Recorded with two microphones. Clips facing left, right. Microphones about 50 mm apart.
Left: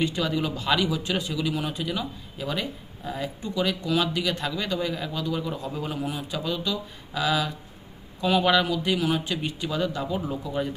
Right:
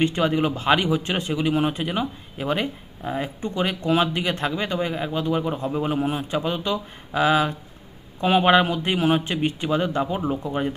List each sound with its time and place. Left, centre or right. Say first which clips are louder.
0.0 s a man's voice: right 5 dB; right